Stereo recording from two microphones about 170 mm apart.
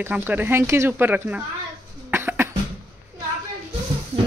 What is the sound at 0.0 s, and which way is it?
Speech, 10° right (ahead or behind).